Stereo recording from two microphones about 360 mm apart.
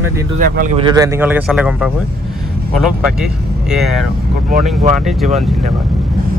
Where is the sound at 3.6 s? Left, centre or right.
Centre.